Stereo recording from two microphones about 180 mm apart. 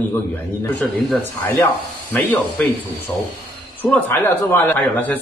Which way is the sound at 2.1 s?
Centre (ahead or behind).